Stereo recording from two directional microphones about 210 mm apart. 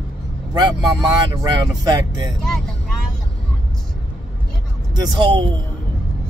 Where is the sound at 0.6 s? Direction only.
20° right (ahead or behind).